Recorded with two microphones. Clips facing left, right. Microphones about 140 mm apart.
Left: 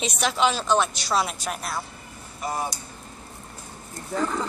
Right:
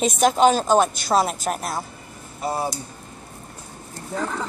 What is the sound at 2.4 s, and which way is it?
Speech, 30° right (ahead or behind).